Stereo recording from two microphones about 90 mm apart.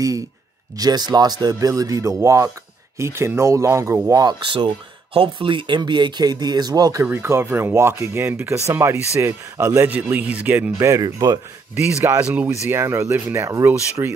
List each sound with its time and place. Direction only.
0.7 s speech: 50° right (ahead or behind); by 4.0 s 30° right (ahead or behind)
4.1 s speech: 45° right (ahead or behind)
4.5 s speech: 70° right (ahead or behind); by 7.1 s 45° right (ahead or behind)
7.1 s speech: 30° right (ahead or behind)
10.0 s speech: 15° right (ahead or behind)
10.8 s speech: 35° right (ahead or behind)
12.2 s speech: 15° right (ahead or behind)
12.6 s speech: 30° right (ahead or behind)